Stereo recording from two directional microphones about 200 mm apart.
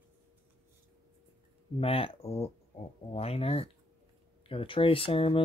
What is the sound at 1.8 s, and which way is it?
Speech, 30° left (ahead or behind).